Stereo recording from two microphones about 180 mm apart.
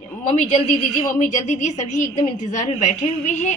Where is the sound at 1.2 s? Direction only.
40° left (ahead or behind).